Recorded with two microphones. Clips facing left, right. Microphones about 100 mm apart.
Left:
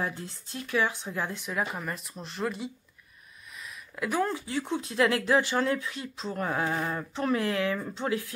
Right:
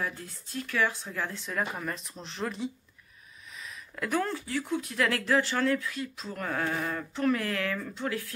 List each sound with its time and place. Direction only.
0.0 s speech: 25° left (ahead or behind)
1.5 s speech: 5° left (ahead or behind); by 8.3 s 20° left (ahead or behind)